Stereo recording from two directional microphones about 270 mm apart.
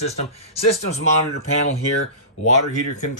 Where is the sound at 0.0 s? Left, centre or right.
Left.